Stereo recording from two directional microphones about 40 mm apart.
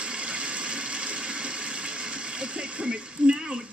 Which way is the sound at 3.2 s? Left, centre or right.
Right.